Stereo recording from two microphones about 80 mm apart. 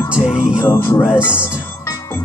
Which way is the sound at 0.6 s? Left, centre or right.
Left.